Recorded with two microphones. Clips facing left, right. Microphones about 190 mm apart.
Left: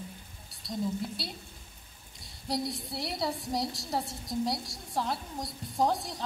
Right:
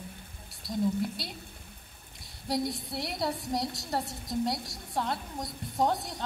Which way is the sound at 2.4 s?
Centre (ahead or behind).